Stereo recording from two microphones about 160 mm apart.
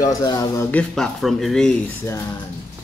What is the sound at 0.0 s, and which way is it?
Speech, 20° left (ahead or behind).